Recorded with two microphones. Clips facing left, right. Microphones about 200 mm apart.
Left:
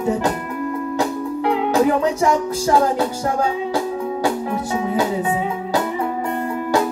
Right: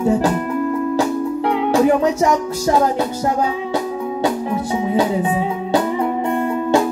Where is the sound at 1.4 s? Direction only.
30° left (ahead or behind).